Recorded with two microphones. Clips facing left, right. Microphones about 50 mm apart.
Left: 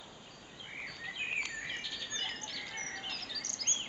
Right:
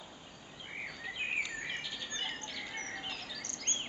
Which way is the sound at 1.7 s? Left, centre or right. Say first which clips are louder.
Right 1 dB; centre.